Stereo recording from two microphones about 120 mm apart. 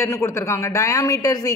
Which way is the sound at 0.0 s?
20° left (ahead or behind).